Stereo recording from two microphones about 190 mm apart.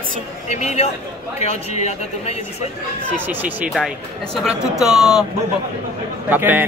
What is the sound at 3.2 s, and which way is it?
A man's voice, 10° right (ahead or behind).